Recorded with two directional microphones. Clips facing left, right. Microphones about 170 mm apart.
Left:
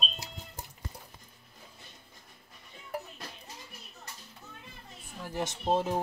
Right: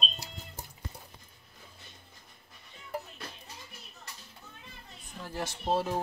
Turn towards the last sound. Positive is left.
turn(degrees=15)  # may be behind; listen again after turning